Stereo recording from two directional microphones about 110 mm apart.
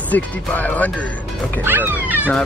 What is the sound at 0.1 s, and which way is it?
Speech, 15° left (ahead or behind).